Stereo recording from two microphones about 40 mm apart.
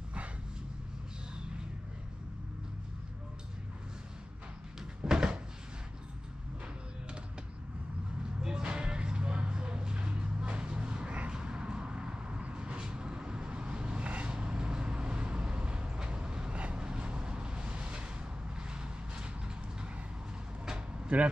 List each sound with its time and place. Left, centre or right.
5.0 s cupboard open or close: right
8.4 s music: centre
16.7 s vehicle: right
20.6 s a sound: right